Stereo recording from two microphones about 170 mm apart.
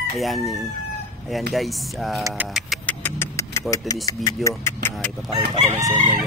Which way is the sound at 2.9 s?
15° left (ahead or behind).